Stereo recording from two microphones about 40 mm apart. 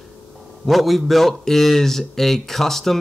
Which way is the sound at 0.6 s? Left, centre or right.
Centre.